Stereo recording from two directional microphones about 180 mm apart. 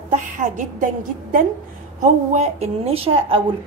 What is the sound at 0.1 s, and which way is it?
Speech, 45° right (ahead or behind).